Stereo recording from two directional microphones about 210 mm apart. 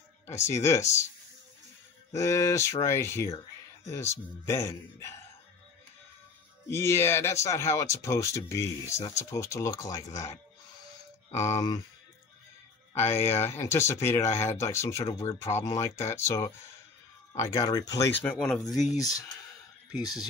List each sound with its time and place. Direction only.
0.3 s speech: 15° left (ahead or behind)
2.1 s speech: 15° left (ahead or behind)
6.7 s speech: 10° left (ahead or behind)
11.3 s speech: 30° left (ahead or behind)
12.9 s speech: 10° left (ahead or behind)
18.9 s speech: 15° left (ahead or behind)
20.0 s speech: centre (ahead or behind)